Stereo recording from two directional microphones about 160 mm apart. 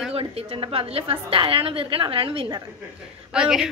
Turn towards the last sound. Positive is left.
turn(degrees=-5)  # may be behind; listen again after turning